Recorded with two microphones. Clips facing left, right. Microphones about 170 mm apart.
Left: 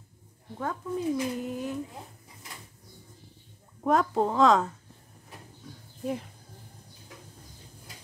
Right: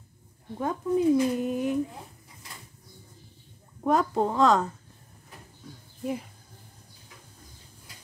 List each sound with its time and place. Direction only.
0.6 s speech: 15° right (ahead or behind)
3.8 s a woman's voice: centre (ahead or behind)